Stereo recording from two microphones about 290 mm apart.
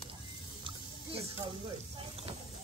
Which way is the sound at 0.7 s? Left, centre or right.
Centre.